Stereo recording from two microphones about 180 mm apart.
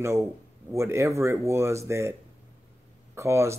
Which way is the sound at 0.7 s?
15° right (ahead or behind).